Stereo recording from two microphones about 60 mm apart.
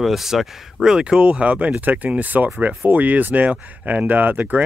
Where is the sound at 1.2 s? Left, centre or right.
Right.